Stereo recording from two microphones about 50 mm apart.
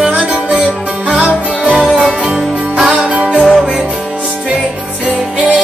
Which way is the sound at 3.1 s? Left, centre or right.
Right.